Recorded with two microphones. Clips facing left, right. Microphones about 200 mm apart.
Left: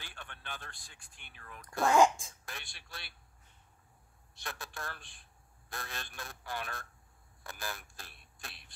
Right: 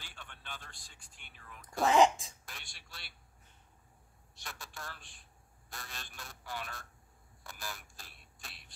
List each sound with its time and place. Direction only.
0.1 s speech: 55° left (ahead or behind)
1.8 s speech: centre (ahead or behind)
2.5 s speech: 55° left (ahead or behind)
4.4 s speech: 55° left (ahead or behind)